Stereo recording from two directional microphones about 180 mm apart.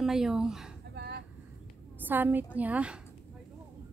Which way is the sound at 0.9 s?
65° right (ahead or behind).